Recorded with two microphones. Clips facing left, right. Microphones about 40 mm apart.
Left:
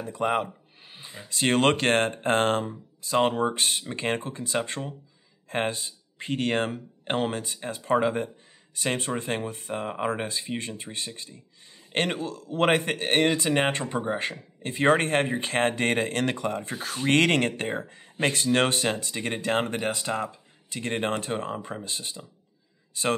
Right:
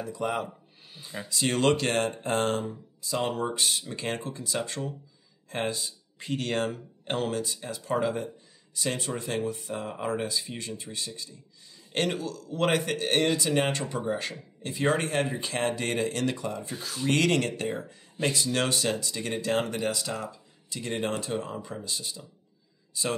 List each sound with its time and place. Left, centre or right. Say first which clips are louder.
0.0 s speech: left 4 dB; left
0.8 s a sound: left 2 dB; left
1.3 s speech: left 2 dB; left